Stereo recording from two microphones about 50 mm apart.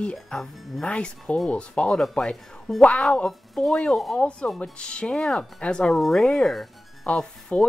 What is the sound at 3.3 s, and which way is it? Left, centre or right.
Speech, centre.